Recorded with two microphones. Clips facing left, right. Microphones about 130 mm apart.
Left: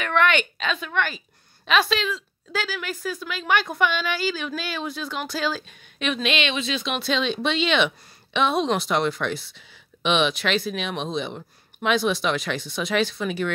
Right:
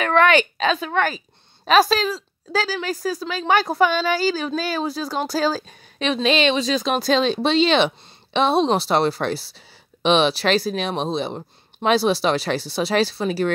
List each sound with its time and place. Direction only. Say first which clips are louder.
0.0 s a woman's voice: right 5 dB; 35° right (ahead or behind)